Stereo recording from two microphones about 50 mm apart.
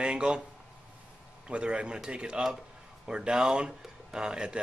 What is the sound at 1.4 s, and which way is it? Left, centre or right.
Speech, right.